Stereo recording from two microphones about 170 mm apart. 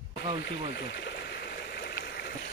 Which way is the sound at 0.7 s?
80° left.